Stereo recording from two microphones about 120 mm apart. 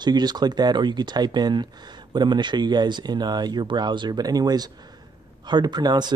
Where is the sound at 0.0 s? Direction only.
35° right (ahead or behind).